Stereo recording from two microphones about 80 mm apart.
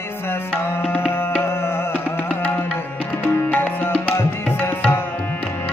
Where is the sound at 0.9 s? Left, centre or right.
Left.